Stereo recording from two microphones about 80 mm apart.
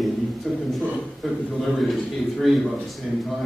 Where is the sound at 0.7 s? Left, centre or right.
Centre.